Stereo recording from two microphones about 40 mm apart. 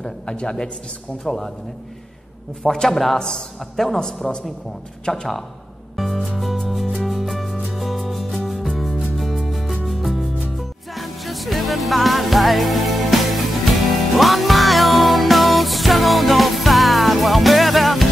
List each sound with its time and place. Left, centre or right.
0.3 s a man's voice: centre
2.6 s a man's voice: centre
4.0 s a man's voice: centre
5.9 s music: centre